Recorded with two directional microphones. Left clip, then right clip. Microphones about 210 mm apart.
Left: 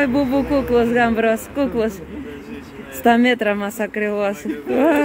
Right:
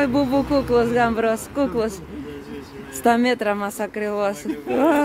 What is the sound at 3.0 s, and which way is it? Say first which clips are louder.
A woman's voice: left 3 dB; centre (ahead or behind).